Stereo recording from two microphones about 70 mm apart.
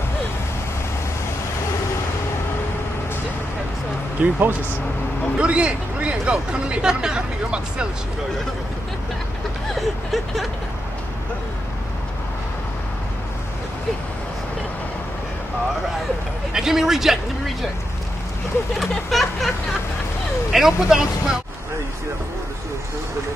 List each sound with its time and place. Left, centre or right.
4.2 s speech: right
5.4 s speech: centre
9.8 s speech: centre
16.5 s speech: centre
18.8 s a sound: centre
20.5 s speech: centre